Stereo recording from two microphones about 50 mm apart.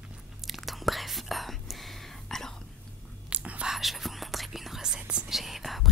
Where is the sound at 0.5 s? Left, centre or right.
Centre.